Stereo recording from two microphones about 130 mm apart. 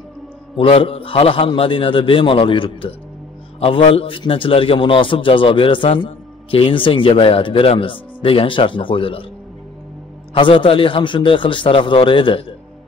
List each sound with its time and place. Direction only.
0.6 s a man's voice: 45° left (ahead or behind)
10.3 s a man's voice: 40° left (ahead or behind)